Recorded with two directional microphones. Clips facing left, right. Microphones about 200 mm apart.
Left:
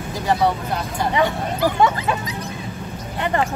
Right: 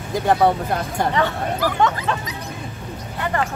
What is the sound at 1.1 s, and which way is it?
Speech, 15° left (ahead or behind).